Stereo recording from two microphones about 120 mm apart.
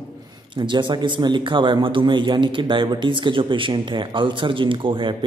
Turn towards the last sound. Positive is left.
turn(degrees=-40)  # may be behind; listen again after turning